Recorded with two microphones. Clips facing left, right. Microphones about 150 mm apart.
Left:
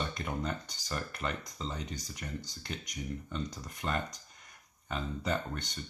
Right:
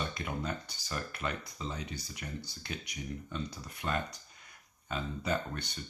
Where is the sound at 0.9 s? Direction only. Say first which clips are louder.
Left 1 dB; 5° right (ahead or behind).